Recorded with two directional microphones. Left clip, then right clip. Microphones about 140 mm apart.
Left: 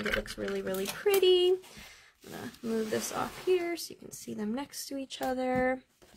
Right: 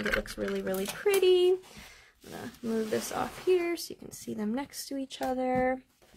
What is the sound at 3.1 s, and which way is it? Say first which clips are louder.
Speech: right 3 dB; 25° right (ahead or behind).